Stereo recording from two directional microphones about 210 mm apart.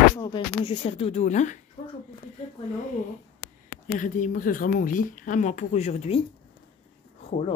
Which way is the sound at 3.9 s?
40° left (ahead or behind).